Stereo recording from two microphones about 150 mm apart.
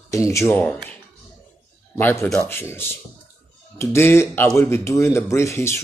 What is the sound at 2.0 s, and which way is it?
A man's voice, 15° left (ahead or behind).